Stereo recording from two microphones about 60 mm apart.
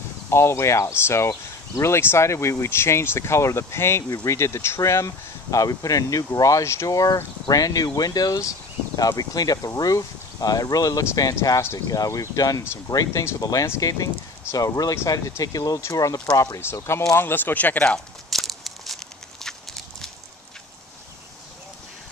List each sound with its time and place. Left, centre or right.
0.3 s speech: left
7.4 s speech: left
11.7 s speech: left
15.9 s speech: left
16.5 s speech: left
17.1 s speech: left
18.3 s a sound: centre
19.4 s horse: centre